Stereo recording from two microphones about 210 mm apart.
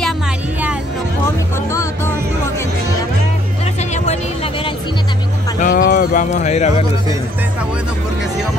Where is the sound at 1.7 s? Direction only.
15° left (ahead or behind).